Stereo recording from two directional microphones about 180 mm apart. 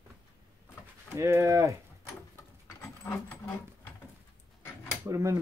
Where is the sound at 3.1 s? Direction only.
10° left (ahead or behind).